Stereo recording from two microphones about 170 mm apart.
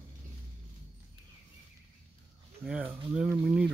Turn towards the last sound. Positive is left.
turn(degrees=-5)  # may be behind; listen again after turning